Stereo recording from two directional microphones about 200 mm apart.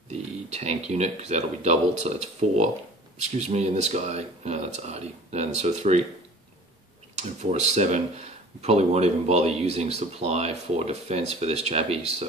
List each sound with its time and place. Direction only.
0.1 s speech: 35° right (ahead or behind)
7.2 s speech: 35° right (ahead or behind)